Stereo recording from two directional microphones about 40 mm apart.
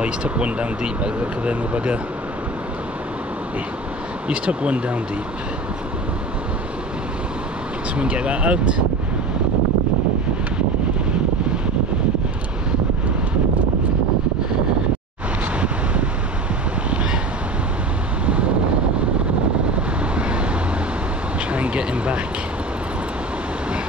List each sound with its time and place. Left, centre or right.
0.0 s speech: right
4.3 s speech: right
8.0 s speech: right
18.2 s wind noise: right
19.7 s vehicle: right
21.5 s a sound: right